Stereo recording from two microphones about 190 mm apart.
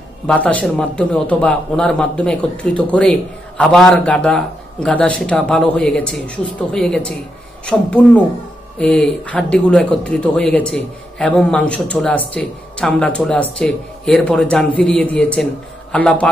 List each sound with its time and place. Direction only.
0.3 s speech: 5° left (ahead or behind)